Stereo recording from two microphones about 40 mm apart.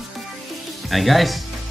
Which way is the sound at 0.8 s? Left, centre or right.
Centre.